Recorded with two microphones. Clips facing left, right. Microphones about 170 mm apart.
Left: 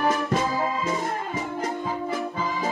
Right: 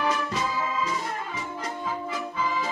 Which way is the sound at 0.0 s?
50° left (ahead or behind).